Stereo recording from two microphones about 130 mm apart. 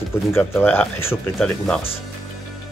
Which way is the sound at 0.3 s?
15° left (ahead or behind).